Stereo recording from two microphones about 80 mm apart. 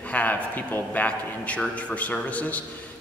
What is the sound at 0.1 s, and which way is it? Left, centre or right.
A man's voice, left.